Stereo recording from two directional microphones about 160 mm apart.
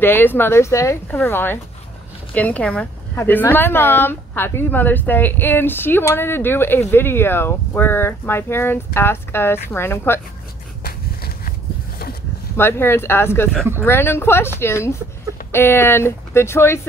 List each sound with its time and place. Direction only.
0.0 s a woman's voice: 10° left (ahead or behind)
10.8 s a sound: 70° left (ahead or behind)
12.5 s a woman's voice: 15° left (ahead or behind)